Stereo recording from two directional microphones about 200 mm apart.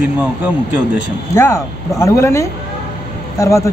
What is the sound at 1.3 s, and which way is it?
Speech, 15° left (ahead or behind).